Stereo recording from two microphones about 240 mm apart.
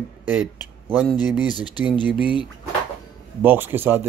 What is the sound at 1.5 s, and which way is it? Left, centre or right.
Speech, centre.